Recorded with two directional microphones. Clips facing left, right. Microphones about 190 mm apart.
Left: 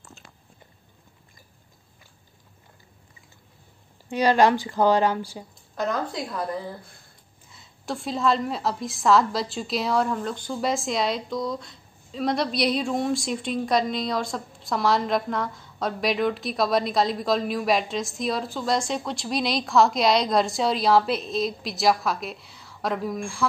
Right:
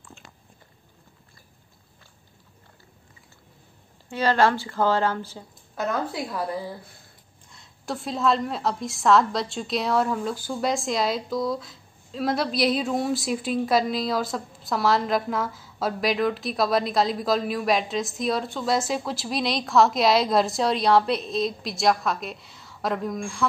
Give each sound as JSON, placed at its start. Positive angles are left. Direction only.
{"t": 4.1, "sound": "speech", "side_deg": 15}
{"t": 5.8, "sound": "a woman's voice", "side_deg": -5}
{"t": 7.4, "sound": "a woman's voice", "side_deg": 0}